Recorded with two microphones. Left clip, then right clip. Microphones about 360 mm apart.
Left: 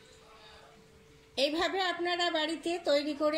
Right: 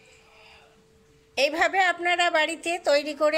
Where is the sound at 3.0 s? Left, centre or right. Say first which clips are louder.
Right 6 dB; right.